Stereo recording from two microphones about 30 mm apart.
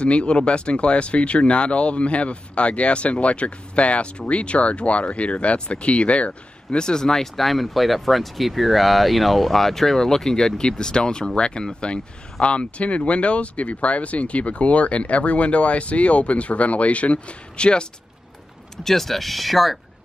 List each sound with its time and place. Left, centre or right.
0.0 s speech: left
6.8 s speech: left
18.9 s speech: centre